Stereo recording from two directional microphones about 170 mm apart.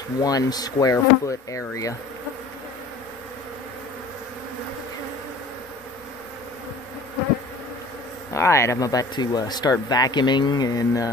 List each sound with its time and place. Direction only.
0.2 s speech: 20° left (ahead or behind)
8.3 s speech: 15° left (ahead or behind)